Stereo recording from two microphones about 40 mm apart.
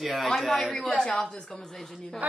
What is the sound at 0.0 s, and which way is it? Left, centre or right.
Speech, centre.